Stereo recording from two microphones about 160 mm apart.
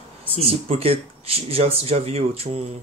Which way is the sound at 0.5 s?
40° right (ahead or behind).